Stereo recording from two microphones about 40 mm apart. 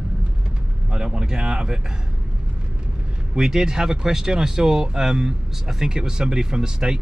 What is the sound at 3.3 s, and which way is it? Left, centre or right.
Speech, centre.